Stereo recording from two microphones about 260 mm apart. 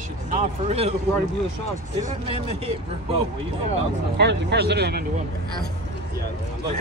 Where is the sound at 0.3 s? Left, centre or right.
Right.